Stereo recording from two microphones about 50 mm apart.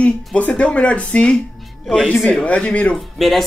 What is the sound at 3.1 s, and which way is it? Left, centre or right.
Speech, centre.